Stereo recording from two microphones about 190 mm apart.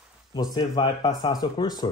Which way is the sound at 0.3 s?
25° left (ahead or behind).